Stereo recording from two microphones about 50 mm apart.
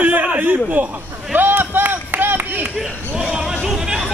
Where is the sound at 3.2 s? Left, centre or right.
Centre.